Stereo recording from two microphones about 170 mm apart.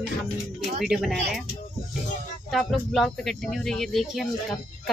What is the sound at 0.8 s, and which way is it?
Speech, centre (ahead or behind).